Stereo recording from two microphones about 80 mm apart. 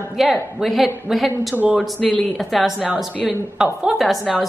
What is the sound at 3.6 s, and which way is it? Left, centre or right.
Speech, centre.